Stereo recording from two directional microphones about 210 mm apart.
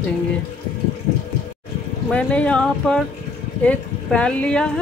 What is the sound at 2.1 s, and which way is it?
Speech, 5° left (ahead or behind).